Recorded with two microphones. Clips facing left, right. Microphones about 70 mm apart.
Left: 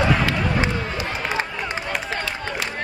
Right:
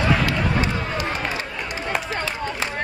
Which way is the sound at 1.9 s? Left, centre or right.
Right.